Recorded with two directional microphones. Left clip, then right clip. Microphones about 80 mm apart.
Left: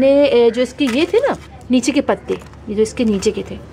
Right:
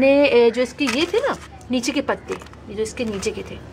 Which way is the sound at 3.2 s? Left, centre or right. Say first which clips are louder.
Left 7 dB; centre.